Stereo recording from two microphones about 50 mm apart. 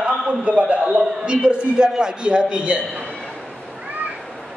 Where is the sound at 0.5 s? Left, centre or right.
Right.